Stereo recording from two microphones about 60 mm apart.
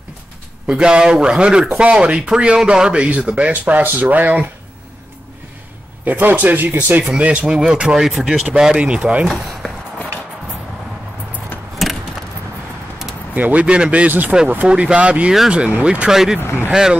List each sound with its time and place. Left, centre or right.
0.7 s speech: centre
6.0 s speech: right
7.0 s speech: right
7.4 s speech: centre
9.3 s chop: centre
11.8 s vehicle: centre
13.3 s speech: right
16.1 s speech: centre
16.3 s speech: left